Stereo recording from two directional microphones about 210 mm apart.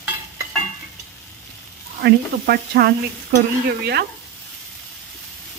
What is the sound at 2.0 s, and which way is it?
Speech, 50° right (ahead or behind).